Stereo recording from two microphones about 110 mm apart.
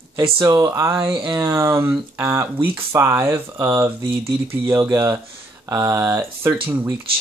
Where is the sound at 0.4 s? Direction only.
30° right (ahead or behind).